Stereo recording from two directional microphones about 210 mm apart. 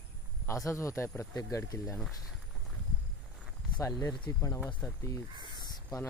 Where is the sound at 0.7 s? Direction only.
15° left (ahead or behind).